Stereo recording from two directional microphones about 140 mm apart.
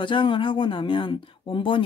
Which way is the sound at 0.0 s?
35° left (ahead or behind).